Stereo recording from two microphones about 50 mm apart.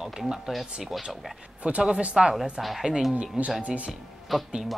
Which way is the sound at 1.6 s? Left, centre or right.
Right.